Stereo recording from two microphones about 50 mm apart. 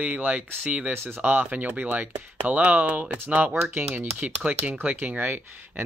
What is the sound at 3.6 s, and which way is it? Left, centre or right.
Speech, right.